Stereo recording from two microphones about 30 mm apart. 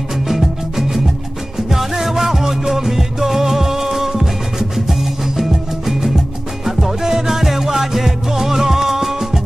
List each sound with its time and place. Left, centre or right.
0.3 s music: centre